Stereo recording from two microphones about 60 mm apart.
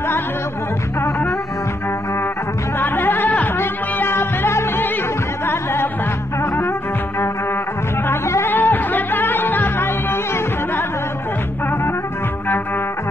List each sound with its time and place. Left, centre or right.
2.8 s music: left
3.5 s music: left
8.5 s music: left